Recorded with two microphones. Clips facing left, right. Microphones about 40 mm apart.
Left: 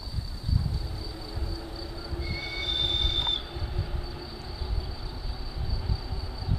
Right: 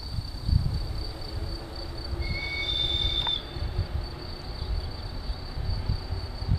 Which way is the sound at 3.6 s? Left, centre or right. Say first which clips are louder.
Even; centre.